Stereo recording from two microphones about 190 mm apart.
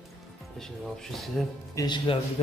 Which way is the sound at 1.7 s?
20° left (ahead or behind).